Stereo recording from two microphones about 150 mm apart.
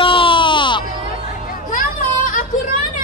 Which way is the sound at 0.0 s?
35° left (ahead or behind).